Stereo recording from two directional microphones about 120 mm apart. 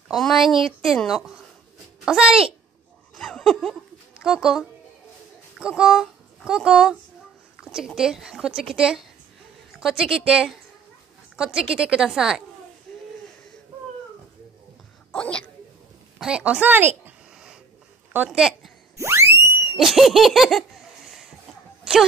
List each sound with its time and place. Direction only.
0.1 s a child's voice: centre (ahead or behind)
3.2 s laughter: 5° left (ahead or behind)
4.2 s a woman's voice: 5° right (ahead or behind)
12.9 s a sound: centre (ahead or behind)
15.0 s a sound: 10° left (ahead or behind)
16.2 s a woman's voice: 10° right (ahead or behind)
18.1 s speech: 15° right (ahead or behind)
18.9 s a sound: 20° right (ahead or behind)
19.8 s laughter: centre (ahead or behind)